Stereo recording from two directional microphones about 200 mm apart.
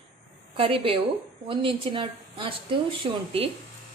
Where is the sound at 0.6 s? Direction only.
25° right (ahead or behind).